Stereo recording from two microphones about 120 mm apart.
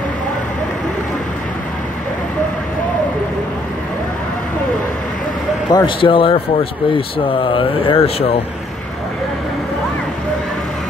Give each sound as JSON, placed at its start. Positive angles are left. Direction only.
{"t": 5.7, "sound": "speech", "side_deg": 35}
{"t": 5.9, "sound": "speech", "side_deg": 45}